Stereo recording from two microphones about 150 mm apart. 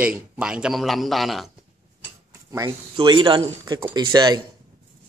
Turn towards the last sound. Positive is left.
turn(degrees=-30)  # may be behind; listen again after turning